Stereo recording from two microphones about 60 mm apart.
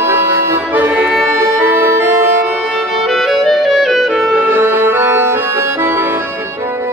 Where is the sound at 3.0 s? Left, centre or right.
Centre.